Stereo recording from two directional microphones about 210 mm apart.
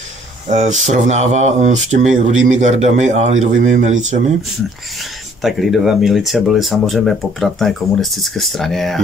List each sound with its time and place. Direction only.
0.5 s speech: 35° right (ahead or behind)
5.4 s speech: centre (ahead or behind)